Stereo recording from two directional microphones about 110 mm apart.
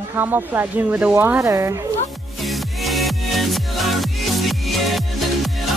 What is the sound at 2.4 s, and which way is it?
Music, centre (ahead or behind).